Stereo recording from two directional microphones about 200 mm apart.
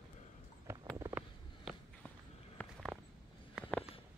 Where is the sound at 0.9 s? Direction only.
20° right (ahead or behind).